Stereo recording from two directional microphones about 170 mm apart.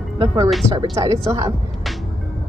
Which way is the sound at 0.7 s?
20° right (ahead or behind).